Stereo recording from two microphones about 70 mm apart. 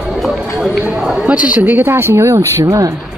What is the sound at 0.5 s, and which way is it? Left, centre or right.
Speech, centre.